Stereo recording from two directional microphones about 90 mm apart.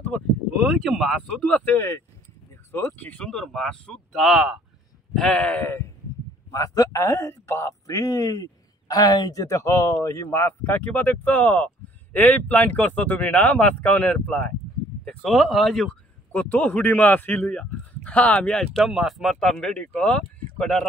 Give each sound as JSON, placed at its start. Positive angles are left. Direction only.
{"t": 0.6, "sound": "speech", "side_deg": 0}
{"t": 1.8, "sound": "speech", "side_deg": 35}
{"t": 2.7, "sound": "speech", "side_deg": 25}
{"t": 4.2, "sound": "speech", "side_deg": -5}
{"t": 5.1, "sound": "speech", "side_deg": 10}
{"t": 6.5, "sound": "speech", "side_deg": 40}
{"t": 7.0, "sound": "speech", "side_deg": 30}
{"t": 15.0, "sound": "speech", "side_deg": 5}
{"t": 16.3, "sound": "speech", "side_deg": 20}
{"t": 19.7, "sound": "speech", "side_deg": 10}